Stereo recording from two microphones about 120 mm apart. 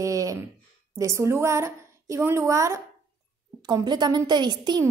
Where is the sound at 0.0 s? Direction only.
25° right (ahead or behind).